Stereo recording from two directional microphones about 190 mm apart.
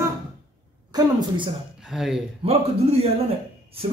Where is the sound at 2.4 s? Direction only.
30° right (ahead or behind).